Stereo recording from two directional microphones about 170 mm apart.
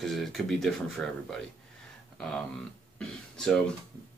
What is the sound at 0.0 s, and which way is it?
Speech, centre (ahead or behind).